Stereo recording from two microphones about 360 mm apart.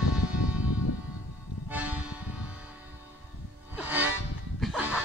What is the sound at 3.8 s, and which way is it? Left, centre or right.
Music, centre.